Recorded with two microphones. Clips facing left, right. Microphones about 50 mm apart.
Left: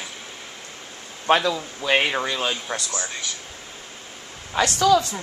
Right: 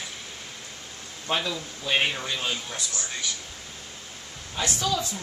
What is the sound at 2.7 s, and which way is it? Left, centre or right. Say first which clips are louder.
Speech: left 7 dB; left.